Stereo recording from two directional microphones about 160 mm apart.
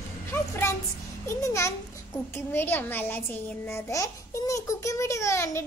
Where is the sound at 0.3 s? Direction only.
15° left (ahead or behind).